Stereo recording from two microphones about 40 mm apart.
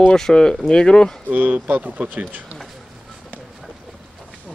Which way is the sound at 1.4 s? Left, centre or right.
Right.